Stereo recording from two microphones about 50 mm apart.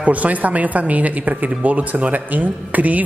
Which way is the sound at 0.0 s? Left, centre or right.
Right.